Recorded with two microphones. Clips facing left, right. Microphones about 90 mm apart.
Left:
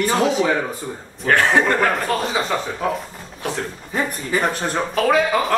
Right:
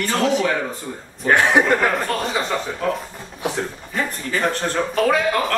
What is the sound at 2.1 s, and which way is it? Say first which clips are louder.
A man's voice: left 1 dB; centre (ahead or behind).